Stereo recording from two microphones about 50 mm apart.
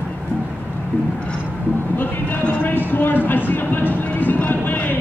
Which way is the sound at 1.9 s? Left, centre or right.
Left.